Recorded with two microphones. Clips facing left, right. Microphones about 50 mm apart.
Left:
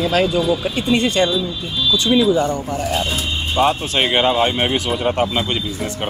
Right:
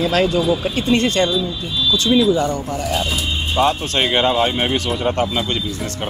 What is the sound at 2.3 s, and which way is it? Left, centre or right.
Speech, left.